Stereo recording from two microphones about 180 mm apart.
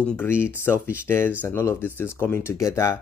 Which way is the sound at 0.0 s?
10° left (ahead or behind).